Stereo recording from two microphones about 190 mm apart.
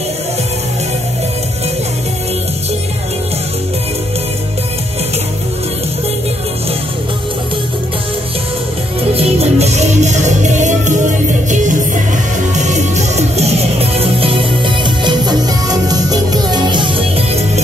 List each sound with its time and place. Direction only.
9.1 s music: 30° right (ahead or behind)
12.5 s music: 40° right (ahead or behind)